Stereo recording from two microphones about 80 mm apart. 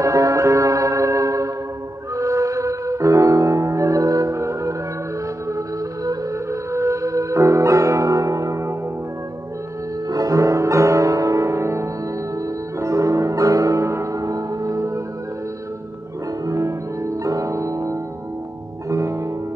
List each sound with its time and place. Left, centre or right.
0.0 s music: right
6.0 s music: right
10.0 s music: right
16.4 s music: right